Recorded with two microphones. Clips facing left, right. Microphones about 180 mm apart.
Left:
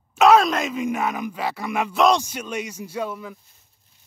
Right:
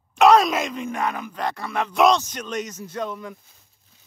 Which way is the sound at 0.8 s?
10° left (ahead or behind).